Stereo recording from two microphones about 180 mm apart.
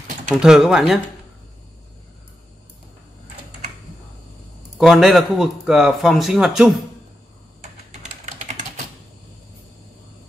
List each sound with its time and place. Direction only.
0.4 s speech: 5° right (ahead or behind)
4.7 s speech: centre (ahead or behind)
8.1 s typing: 40° right (ahead or behind)